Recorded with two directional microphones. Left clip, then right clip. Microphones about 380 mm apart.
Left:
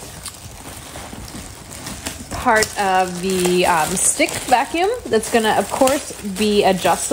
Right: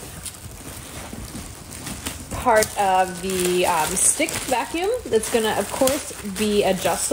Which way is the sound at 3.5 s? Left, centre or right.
Left.